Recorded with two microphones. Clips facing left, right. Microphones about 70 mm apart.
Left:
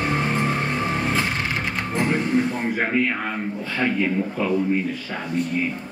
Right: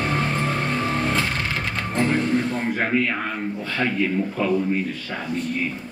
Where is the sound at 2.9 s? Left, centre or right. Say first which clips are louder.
Left 1 dB; centre.